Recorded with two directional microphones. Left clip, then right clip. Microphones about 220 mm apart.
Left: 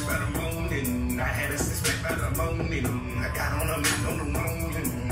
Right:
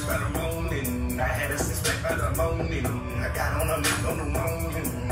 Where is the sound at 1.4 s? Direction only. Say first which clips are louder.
Right 1 dB; centre (ahead or behind).